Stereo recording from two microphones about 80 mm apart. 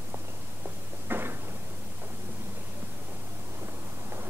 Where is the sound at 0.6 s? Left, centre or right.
Right.